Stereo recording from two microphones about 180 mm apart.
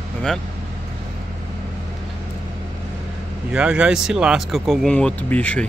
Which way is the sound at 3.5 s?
5° right (ahead or behind).